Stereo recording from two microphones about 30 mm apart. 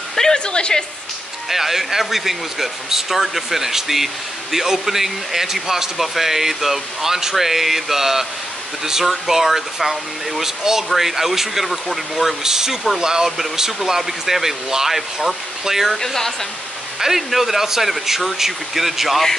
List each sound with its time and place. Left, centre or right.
0.1 s music: centre
0.5 s a woman's voice: left
1.5 s speech: centre
12.4 s speech: centre
13.8 s speech: centre
17.3 s speech: centre